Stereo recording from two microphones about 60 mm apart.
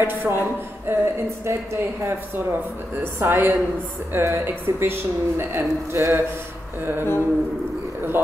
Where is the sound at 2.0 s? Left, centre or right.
Right.